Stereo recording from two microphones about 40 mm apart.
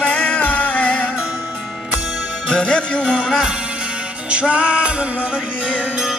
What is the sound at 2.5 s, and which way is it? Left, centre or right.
Music, left.